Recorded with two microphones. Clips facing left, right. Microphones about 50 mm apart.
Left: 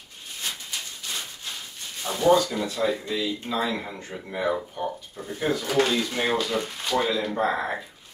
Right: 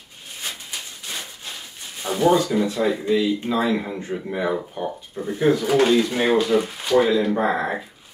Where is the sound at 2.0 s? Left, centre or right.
Centre.